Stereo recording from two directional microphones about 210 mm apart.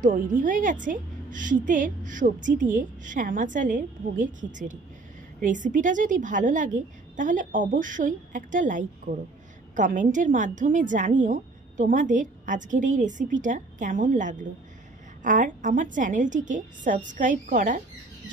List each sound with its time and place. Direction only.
0.0 s a woman's voice: 40° right (ahead or behind)